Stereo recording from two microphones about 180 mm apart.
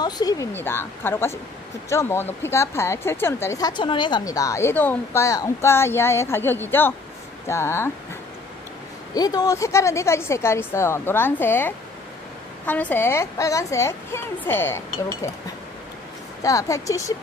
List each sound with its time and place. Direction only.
0.0 s speech: 20° left (ahead or behind)
9.1 s speech: 20° left (ahead or behind)
16.4 s speech: 20° left (ahead or behind)